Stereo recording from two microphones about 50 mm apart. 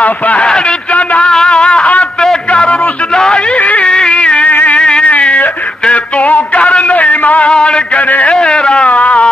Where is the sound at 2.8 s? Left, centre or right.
Centre.